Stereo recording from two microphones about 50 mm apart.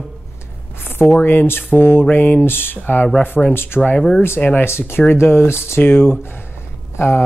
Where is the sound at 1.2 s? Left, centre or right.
Left.